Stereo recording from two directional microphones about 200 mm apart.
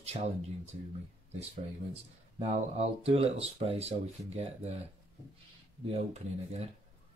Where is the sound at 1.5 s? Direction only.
30° right (ahead or behind).